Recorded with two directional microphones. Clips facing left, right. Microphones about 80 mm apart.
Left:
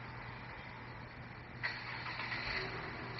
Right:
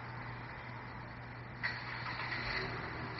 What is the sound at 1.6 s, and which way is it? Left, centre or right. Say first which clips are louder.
Vehicle: right 2 dB; centre.